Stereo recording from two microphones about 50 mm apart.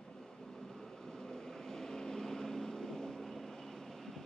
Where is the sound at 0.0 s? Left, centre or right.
Centre.